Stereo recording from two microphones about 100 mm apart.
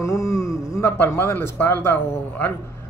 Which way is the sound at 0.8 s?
20° left (ahead or behind).